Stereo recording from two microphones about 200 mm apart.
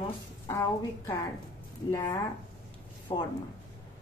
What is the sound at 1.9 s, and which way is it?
A woman's voice, 20° left (ahead or behind).